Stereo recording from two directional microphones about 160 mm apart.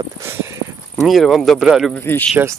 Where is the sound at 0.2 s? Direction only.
15° right (ahead or behind).